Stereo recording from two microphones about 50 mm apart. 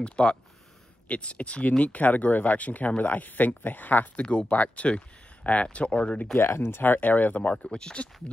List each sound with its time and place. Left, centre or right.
0.0 s speech: centre; by 4.1 s left
4.2 s speech: left
6.3 s speech: left
7.6 s speech: centre